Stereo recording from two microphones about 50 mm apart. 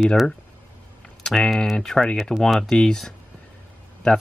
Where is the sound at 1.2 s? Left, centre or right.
Centre.